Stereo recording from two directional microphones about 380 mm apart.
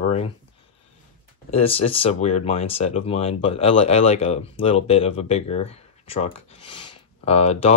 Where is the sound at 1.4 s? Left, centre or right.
Centre.